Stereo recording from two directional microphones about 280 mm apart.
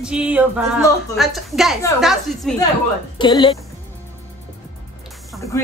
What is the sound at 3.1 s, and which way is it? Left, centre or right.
Speech, centre.